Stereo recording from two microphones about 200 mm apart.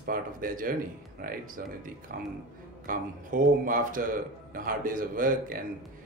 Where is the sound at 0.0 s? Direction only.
45° right (ahead or behind).